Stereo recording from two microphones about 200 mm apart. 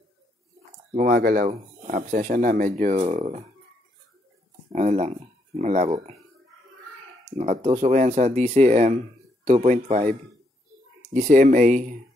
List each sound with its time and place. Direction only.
1.0 s speech: 50° right (ahead or behind); by 3.4 s 35° right (ahead or behind)
4.7 s speech: 35° right (ahead or behind)
7.2 s speech: 30° right (ahead or behind)
11.1 s speech: 40° right (ahead or behind)